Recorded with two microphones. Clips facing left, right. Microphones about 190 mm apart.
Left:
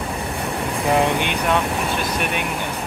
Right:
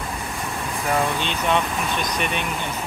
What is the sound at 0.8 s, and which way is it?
Speech, 20° left (ahead or behind).